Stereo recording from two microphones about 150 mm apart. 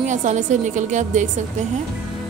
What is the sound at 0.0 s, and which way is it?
A woman's voice, 50° right (ahead or behind).